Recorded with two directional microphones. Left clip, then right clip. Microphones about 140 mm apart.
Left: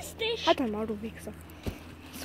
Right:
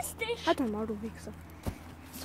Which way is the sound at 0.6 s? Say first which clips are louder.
Left 2 dB; 5° right (ahead or behind).